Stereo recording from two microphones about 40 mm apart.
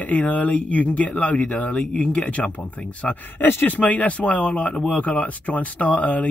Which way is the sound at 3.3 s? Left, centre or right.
Left.